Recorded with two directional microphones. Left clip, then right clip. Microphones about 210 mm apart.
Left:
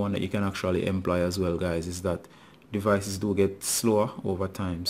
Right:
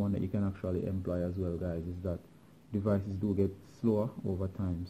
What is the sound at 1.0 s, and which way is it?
Speech, 45° left (ahead or behind).